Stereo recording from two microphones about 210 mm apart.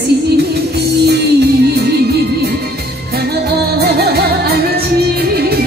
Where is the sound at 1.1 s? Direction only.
50° right (ahead or behind).